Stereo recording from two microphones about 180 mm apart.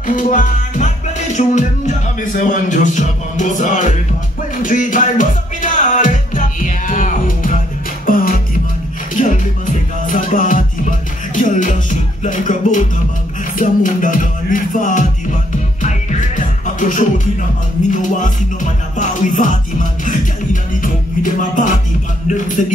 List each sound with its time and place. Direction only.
0.0 s music: 45° left (ahead or behind)